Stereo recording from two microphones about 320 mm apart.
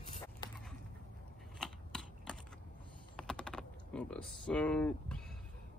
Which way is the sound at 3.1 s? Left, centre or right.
Centre.